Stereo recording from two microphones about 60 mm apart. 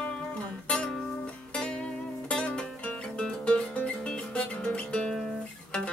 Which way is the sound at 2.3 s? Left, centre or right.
Centre.